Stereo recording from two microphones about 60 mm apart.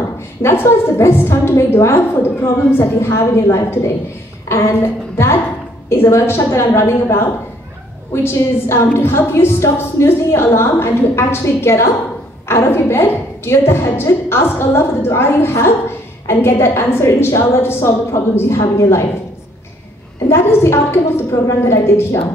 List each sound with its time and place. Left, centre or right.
0.4 s a woman's voice: left
20.2 s a woman's voice: left